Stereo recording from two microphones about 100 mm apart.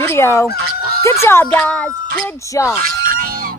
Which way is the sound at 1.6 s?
10° left (ahead or behind).